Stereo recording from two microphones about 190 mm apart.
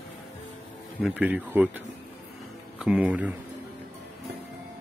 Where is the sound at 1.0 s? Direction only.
5° right (ahead or behind).